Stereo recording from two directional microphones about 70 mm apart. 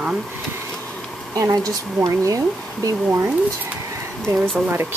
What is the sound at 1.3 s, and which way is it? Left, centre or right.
Speech, right.